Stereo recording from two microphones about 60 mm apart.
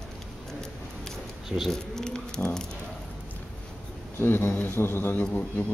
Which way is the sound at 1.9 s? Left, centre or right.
Centre.